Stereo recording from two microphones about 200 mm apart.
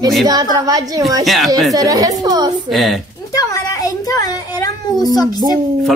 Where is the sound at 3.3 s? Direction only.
15° left (ahead or behind).